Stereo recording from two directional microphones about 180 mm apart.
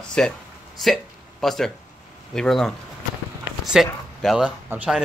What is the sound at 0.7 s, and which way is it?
Hiccup, centre (ahead or behind).